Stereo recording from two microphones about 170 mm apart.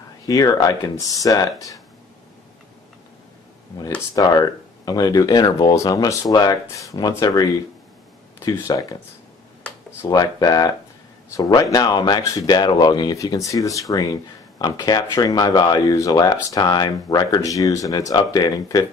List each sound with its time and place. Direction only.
0.3 s speech: 20° left (ahead or behind)
4.1 s speech: 25° left (ahead or behind)
9.6 s a sound: 15° left (ahead or behind)
11.2 s speech: 20° left (ahead or behind)